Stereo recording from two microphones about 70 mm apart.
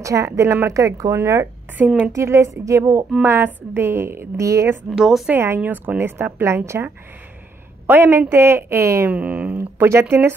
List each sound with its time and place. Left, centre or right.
0.0 s speech: right
3.4 s a woman's voice: right
4.9 s a woman's voice: centre
5.3 s a woman's voice: right
5.6 s speech: right
5.9 s a woman's voice: right
9.1 s speech: centre
9.6 s speech: right